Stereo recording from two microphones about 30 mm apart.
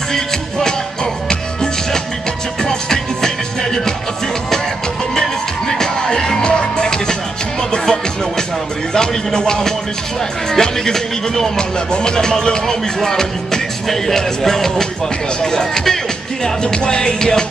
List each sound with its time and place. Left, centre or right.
0.1 s music: centre
2.6 s music: left
5.7 s music: centre
6.4 s music: left
8.9 s speech: left
16.6 s speech: left